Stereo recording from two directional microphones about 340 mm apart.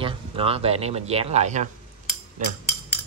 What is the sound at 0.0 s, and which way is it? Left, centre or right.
Speech, centre.